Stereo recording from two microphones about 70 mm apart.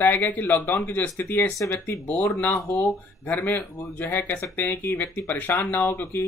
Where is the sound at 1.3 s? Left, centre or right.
Left.